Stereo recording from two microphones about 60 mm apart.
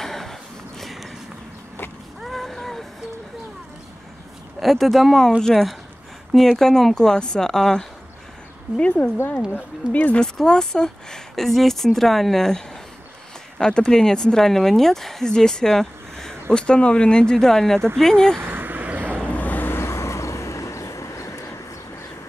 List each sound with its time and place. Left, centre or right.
0.0 s a sound: centre
2.2 s boat: centre
4.6 s speech: centre; by 10.2 s left
10.2 s speech: centre
18.4 s vehicle: right
19.2 s vehicle: left
19.8 s vehicle: left